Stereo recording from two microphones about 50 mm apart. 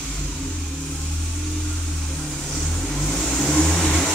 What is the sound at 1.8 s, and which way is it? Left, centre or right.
Vehicle, centre.